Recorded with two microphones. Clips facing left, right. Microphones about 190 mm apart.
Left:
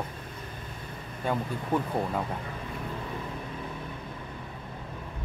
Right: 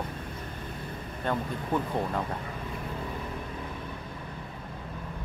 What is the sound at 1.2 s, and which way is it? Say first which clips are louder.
Speech: left 1 dB; 10° left (ahead or behind).